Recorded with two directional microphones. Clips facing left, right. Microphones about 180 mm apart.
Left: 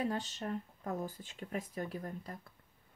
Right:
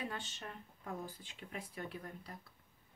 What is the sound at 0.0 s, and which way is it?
Speech, 40° left (ahead or behind).